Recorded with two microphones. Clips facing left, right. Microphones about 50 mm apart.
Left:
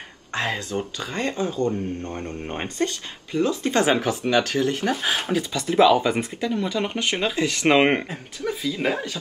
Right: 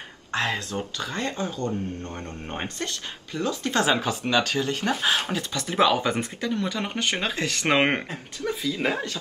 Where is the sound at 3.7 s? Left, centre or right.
Left.